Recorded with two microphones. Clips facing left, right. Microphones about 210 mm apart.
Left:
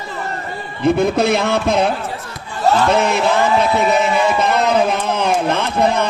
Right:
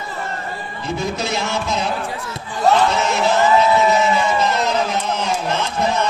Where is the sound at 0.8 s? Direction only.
60° left (ahead or behind).